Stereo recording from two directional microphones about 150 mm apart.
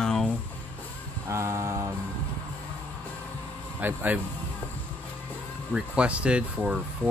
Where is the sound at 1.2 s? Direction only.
20° right (ahead or behind).